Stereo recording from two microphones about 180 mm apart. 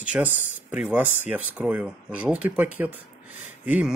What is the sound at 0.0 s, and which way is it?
Speech, 10° right (ahead or behind).